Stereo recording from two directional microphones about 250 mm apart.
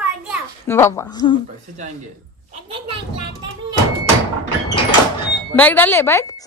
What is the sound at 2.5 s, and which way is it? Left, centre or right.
Speech, right.